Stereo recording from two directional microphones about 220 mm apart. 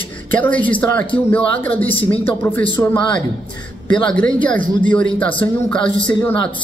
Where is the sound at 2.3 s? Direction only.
10° left (ahead or behind).